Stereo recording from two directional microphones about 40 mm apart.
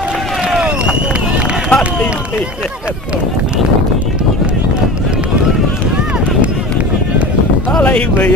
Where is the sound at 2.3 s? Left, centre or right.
Centre.